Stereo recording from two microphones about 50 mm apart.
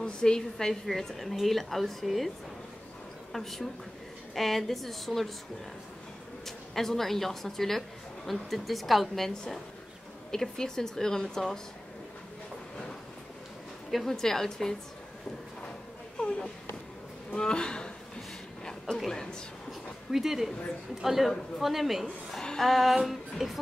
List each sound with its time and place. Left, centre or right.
0.0 s a woman's voice: centre
3.3 s a woman's voice: centre
6.4 s a woman's voice: centre
10.3 s speech: centre
13.8 s a woman's voice: centre
16.2 s a sound: centre
17.4 s speech: centre
20.1 s a woman's voice: centre
22.0 s speech: centre